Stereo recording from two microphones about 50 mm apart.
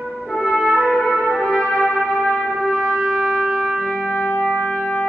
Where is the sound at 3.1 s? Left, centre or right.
Centre.